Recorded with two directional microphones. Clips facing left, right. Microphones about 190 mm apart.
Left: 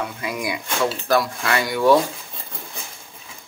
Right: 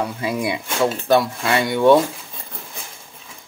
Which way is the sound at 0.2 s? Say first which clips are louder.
Right 4 dB; 30° right (ahead or behind).